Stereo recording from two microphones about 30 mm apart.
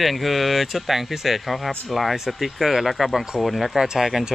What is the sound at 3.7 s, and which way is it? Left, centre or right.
Speech, centre.